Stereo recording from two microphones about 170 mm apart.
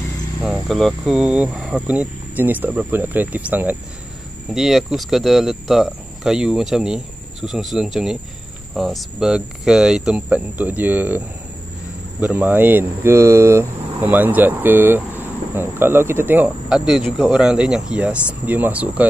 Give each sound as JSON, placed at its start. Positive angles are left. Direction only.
{"t": 0.4, "sound": "speech", "side_deg": 0}